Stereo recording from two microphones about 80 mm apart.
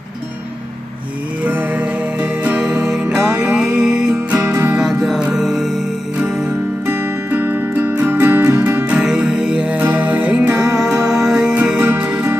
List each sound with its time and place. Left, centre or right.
1.4 s music: centre
4.8 s music: centre
6.1 s music: centre